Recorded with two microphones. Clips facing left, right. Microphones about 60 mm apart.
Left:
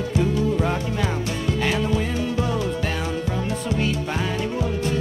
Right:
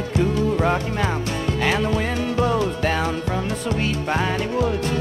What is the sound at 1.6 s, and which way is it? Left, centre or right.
Music, right.